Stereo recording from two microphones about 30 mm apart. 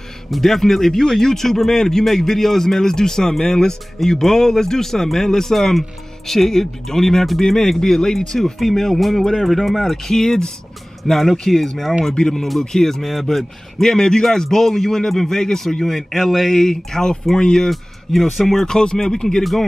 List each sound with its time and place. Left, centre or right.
0.4 s a man's voice: centre
13.0 s speech: centre
13.3 s a man's voice: centre
17.6 s speech: centre
18.8 s a man's voice: left